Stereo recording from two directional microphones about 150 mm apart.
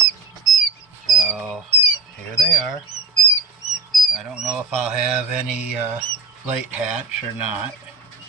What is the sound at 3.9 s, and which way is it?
Speech, centre (ahead or behind).